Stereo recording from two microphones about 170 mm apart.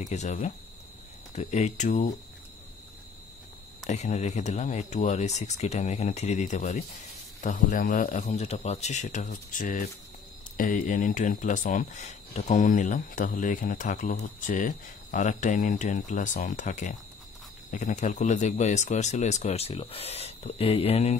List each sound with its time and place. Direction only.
0.0 s speech: 40° left (ahead or behind)
3.8 s speech: 40° left (ahead or behind)